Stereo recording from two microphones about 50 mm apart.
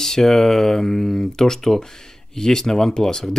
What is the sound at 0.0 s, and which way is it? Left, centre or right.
Speech, centre.